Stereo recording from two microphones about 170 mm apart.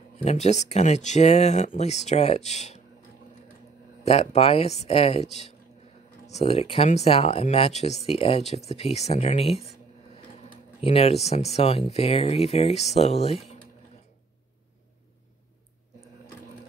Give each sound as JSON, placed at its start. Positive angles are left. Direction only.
{"t": 0.2, "sound": "speech", "side_deg": 40}
{"t": 4.0, "sound": "speech", "side_deg": 35}
{"t": 10.8, "sound": "speech", "side_deg": 35}